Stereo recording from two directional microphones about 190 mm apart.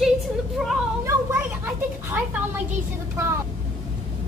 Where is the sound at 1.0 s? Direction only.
15° right (ahead or behind).